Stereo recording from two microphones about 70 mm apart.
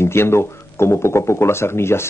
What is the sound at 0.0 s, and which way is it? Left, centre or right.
Speech, left.